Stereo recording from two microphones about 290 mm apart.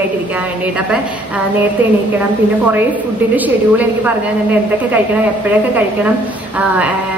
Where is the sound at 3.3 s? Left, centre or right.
Centre.